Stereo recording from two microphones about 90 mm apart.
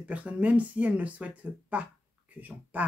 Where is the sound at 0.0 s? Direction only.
15° right (ahead or behind).